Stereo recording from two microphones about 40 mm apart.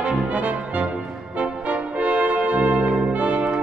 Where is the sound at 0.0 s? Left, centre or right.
Right.